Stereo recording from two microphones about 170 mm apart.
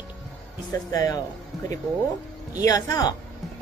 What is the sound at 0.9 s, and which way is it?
Speech, 20° left (ahead or behind).